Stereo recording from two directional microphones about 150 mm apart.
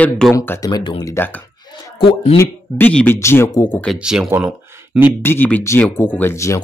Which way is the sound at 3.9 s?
5° right (ahead or behind).